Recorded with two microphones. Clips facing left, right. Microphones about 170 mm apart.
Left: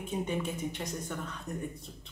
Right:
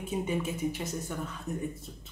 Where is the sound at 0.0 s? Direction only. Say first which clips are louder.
Right 2 dB; 5° right (ahead or behind).